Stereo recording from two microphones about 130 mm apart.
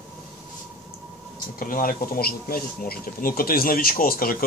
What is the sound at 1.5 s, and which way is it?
Speech, 90° left.